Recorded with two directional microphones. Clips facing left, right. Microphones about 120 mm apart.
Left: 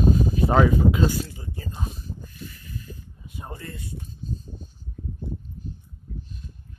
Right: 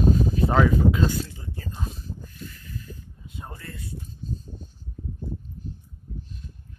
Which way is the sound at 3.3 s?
20° left (ahead or behind).